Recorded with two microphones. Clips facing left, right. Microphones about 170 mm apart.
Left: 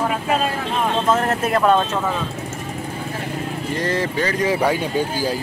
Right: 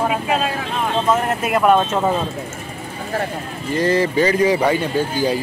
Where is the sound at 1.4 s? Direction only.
10° right (ahead or behind).